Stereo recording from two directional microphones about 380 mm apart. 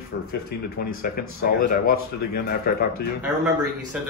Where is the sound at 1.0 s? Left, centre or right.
Left.